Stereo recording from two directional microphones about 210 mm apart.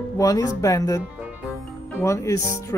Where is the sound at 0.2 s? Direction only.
15° left (ahead or behind).